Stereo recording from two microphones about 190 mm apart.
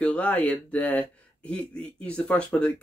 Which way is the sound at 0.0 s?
5° left (ahead or behind).